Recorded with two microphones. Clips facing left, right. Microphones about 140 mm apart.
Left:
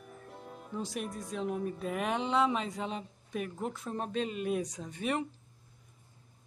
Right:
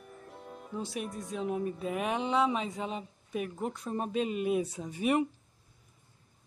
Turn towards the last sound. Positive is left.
turn(degrees=-10)  # may be behind; listen again after turning